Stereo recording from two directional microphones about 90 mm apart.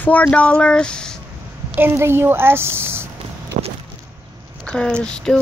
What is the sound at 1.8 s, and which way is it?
A woman's voice, 30° right (ahead or behind).